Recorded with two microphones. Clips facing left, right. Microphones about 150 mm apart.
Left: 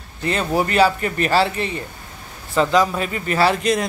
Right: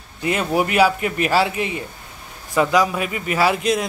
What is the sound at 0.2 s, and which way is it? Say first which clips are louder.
A man's voice: even; 10° right (ahead or behind).